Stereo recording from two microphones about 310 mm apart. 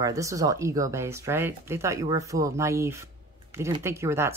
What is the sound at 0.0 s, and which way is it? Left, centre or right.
Speech, centre.